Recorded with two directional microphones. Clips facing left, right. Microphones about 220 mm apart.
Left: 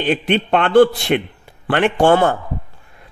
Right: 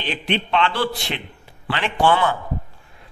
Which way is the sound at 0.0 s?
50° left (ahead or behind).